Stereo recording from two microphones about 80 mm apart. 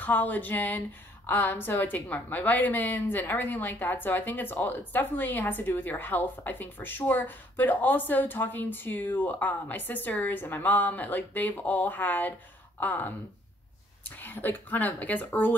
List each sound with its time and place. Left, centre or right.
0.0 s speech: left